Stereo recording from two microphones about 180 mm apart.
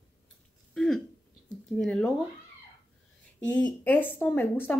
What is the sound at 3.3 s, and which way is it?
Speech, 5° left (ahead or behind).